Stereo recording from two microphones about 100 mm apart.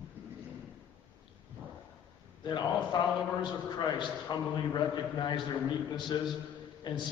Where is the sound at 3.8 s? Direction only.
45° left (ahead or behind).